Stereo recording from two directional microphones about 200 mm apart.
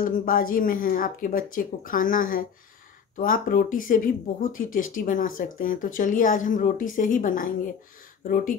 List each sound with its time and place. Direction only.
0.0 s speech: 45° left (ahead or behind)